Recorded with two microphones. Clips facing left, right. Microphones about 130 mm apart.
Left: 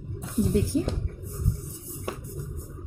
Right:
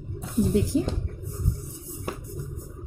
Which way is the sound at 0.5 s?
20° right (ahead or behind).